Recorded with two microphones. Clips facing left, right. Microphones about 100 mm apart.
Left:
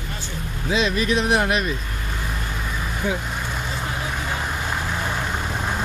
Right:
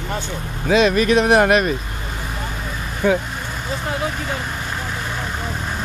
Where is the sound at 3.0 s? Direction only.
70° right (ahead or behind).